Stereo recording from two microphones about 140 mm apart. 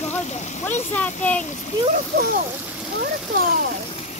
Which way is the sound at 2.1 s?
90° right.